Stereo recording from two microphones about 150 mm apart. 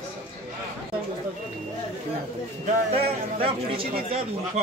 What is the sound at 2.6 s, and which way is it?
Speech, 40° right (ahead or behind).